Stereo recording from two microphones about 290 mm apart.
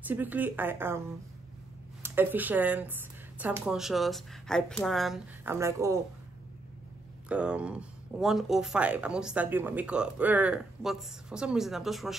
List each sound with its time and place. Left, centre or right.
0.0 s speech: centre
2.0 s speech: centre
7.2 s speech: centre